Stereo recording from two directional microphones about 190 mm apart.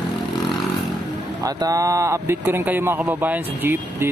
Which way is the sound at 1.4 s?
20° right (ahead or behind).